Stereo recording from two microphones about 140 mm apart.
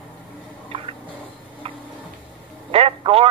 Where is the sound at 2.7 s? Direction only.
40° right (ahead or behind).